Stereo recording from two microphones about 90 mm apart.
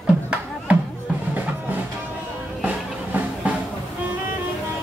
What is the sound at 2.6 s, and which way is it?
Music, 15° right (ahead or behind).